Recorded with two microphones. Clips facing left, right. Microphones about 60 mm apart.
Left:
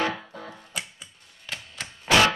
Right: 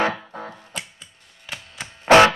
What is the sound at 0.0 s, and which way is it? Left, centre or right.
Music, right.